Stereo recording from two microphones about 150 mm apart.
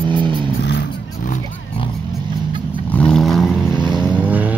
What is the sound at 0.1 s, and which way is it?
Vehicle, 30° right (ahead or behind).